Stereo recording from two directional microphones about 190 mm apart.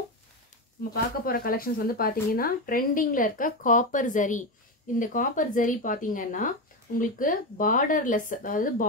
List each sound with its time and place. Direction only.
0.9 s speech: 50° left (ahead or behind)